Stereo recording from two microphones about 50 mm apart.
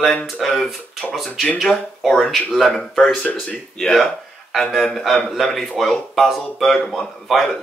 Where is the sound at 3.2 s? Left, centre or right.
Left.